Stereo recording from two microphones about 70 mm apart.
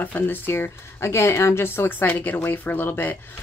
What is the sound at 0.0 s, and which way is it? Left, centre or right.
Speech, left.